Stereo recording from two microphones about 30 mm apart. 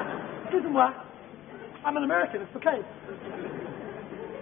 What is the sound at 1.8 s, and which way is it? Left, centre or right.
Speech, centre.